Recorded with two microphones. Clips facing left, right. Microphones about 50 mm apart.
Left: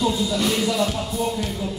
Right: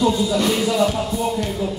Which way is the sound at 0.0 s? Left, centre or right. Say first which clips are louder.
Right 4 dB; centre.